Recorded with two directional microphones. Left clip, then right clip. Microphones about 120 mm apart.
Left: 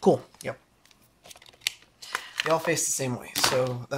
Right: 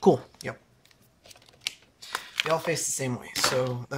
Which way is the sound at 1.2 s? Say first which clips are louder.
Left 3 dB; 15° left (ahead or behind).